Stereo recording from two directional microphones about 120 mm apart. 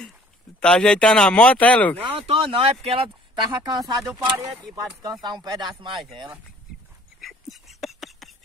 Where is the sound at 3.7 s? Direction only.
35° right (ahead or behind).